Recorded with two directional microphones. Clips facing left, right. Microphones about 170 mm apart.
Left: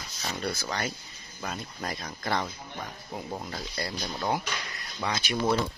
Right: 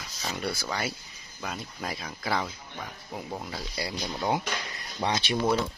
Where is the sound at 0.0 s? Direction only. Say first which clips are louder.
Even; 5° right (ahead or behind).